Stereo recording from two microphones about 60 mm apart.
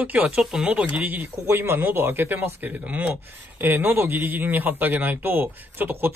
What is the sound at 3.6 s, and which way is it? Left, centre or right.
A man's voice, right.